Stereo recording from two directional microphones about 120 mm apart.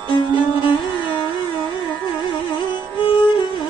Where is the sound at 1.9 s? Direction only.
40° left (ahead or behind).